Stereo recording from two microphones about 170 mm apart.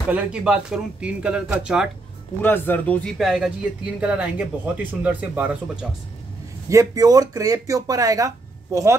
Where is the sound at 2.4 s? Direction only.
10° left (ahead or behind); by 5.9 s 10° right (ahead or behind).